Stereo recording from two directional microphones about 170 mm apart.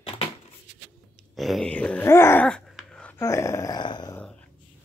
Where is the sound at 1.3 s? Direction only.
Centre (ahead or behind).